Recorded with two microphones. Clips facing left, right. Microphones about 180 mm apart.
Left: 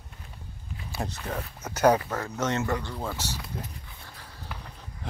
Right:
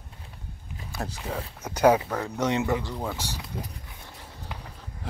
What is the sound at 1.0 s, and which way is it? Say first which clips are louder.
Speech: right 1 dB; 10° right (ahead or behind).